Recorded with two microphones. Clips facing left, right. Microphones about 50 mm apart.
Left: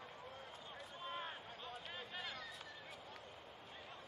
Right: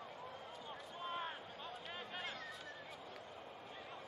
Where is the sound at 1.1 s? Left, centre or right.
Centre.